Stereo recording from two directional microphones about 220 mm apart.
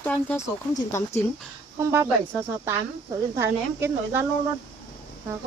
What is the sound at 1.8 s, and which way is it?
Speech, 10° right (ahead or behind).